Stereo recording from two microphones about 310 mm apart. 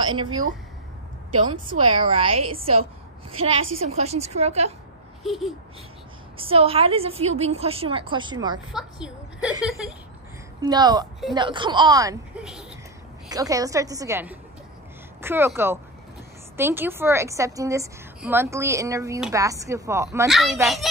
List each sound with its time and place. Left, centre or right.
0.0 s a woman's voice: centre
1.7 s a woman's voice: centre
5.2 s a sound: centre
6.3 s a woman's voice: centre
8.7 s a woman's voice: centre
10.6 s a woman's voice: centre